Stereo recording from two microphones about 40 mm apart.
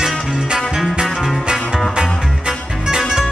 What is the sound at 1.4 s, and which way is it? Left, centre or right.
Music, centre.